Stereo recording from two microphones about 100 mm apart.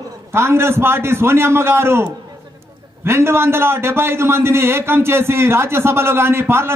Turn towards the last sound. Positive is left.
turn(degrees=-25)  # may be behind; listen again after turning